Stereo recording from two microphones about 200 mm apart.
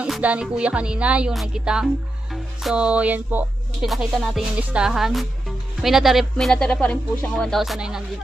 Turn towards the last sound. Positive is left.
turn(degrees=0)  # may be behind; listen again after turning